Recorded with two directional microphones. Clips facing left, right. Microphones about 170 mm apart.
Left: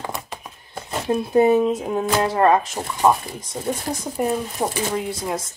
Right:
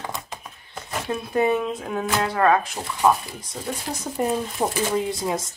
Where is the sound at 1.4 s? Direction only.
40° left (ahead or behind).